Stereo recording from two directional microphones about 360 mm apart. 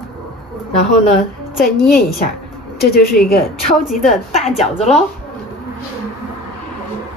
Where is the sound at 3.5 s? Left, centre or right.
Centre.